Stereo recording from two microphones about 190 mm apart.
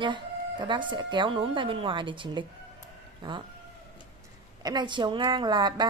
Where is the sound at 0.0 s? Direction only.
25° right (ahead or behind).